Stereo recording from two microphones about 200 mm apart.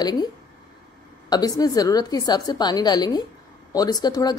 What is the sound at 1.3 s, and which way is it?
A woman's voice, 20° left (ahead or behind).